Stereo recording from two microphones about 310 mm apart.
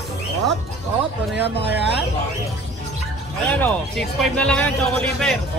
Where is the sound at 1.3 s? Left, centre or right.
Right.